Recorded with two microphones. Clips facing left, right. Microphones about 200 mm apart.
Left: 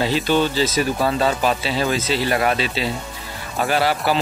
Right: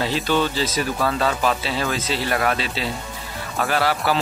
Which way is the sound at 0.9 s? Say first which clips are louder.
Left 2 dB; 25° left (ahead or behind).